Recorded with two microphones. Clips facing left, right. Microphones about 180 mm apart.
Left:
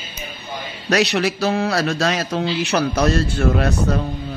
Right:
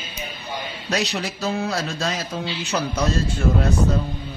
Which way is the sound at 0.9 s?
75° left (ahead or behind).